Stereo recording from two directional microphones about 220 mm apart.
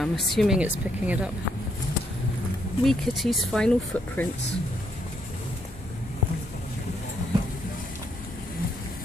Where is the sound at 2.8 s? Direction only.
Centre (ahead or behind).